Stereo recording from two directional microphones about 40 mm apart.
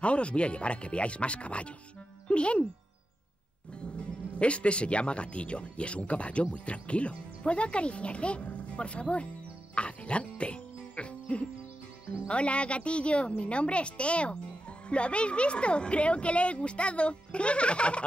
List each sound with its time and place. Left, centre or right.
0.0 s a woman's voice: left
3.8 s a woman's voice: left